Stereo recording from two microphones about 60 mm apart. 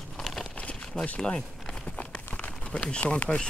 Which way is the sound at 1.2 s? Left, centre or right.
Centre.